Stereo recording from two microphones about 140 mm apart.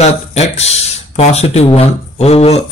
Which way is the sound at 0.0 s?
50° left (ahead or behind).